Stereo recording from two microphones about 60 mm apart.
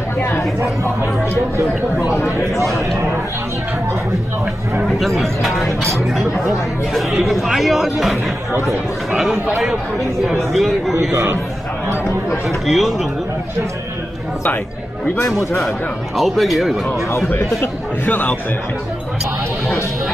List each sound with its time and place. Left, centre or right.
4.8 s speech: centre
10.5 s speech: centre
12.4 s speech: centre
16.2 s speech: centre
18.0 s a man's voice: left